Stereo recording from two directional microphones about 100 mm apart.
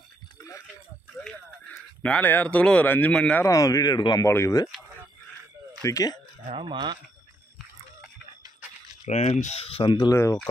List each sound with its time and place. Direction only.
2.0 s speech: 15° left (ahead or behind)
3.4 s speech: 35° left (ahead or behind)
4.3 s speech: 25° left (ahead or behind)
5.9 s speech: 35° left (ahead or behind)
6.5 s speech: 55° right (ahead or behind)
9.0 s speech: 90° left
9.8 s speech: 45° left (ahead or behind)